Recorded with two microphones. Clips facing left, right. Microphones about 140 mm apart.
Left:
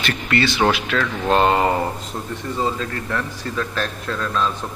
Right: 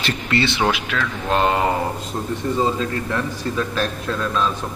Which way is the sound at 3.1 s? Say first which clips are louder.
Right 2 dB; 15° right (ahead or behind).